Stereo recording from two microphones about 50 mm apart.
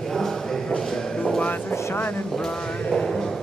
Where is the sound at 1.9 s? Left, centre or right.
Left.